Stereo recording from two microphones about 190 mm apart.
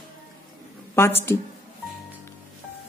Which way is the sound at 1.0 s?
15° left (ahead or behind).